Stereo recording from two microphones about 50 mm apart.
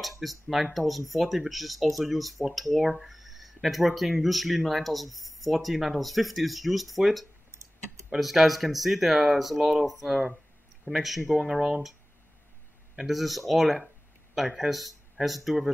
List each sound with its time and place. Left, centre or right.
0.2 s speech: centre
7.6 s a sound: right
8.1 s speech: centre
13.0 s speech: centre